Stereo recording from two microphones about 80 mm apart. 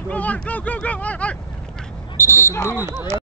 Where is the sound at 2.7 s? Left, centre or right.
Right.